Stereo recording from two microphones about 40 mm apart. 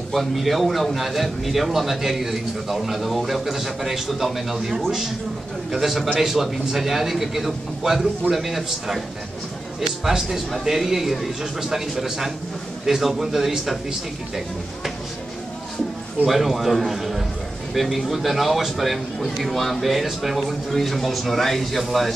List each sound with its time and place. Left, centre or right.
0.1 s a man's voice: centre
16.3 s a man's voice: centre